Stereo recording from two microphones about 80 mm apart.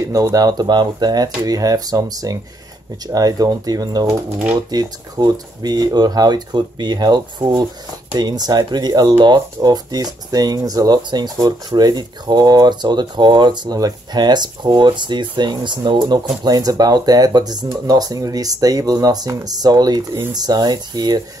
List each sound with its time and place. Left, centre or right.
0.0 s speech: right
11.0 s speech: right
13.7 s speech: right